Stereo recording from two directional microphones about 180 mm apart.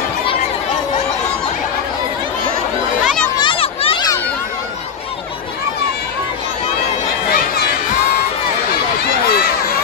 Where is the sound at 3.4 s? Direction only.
30° left (ahead or behind).